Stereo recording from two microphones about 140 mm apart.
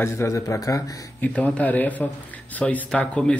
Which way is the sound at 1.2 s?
10° left (ahead or behind).